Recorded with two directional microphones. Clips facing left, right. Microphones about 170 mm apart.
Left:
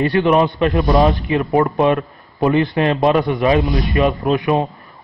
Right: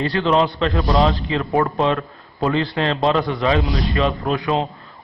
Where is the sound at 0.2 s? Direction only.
15° left (ahead or behind).